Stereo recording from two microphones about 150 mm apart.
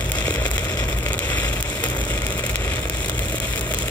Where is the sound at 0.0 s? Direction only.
10° left (ahead or behind).